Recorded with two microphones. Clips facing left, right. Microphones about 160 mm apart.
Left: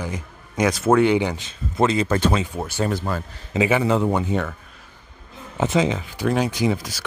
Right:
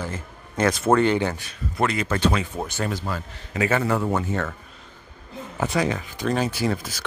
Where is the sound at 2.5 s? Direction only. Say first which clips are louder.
Left 3 dB; 10° left (ahead or behind).